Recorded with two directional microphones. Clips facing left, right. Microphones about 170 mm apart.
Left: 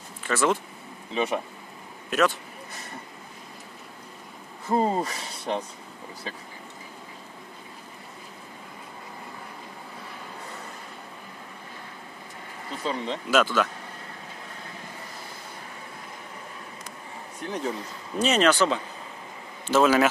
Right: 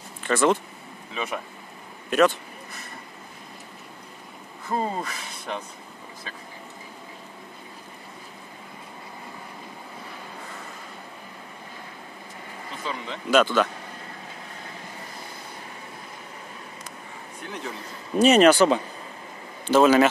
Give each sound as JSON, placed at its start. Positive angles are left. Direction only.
{"t": 0.2, "sound": "speech", "side_deg": 5}
{"t": 1.1, "sound": "speech", "side_deg": 25}
{"t": 2.0, "sound": "a man's voice", "side_deg": 0}
{"t": 4.6, "sound": "speech", "side_deg": 25}
{"t": 12.8, "sound": "speech", "side_deg": 35}
{"t": 13.3, "sound": "speech", "side_deg": 5}
{"t": 17.4, "sound": "speech", "side_deg": 35}
{"t": 18.1, "sound": "speech", "side_deg": -10}
{"t": 19.7, "sound": "speech", "side_deg": 0}